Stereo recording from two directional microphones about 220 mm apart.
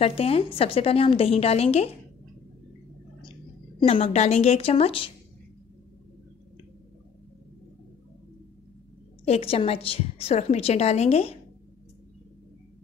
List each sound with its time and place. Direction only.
0.0 s a woman's voice: 25° left (ahead or behind)
3.8 s a woman's voice: 25° left (ahead or behind)
9.2 s a woman's voice: 25° left (ahead or behind)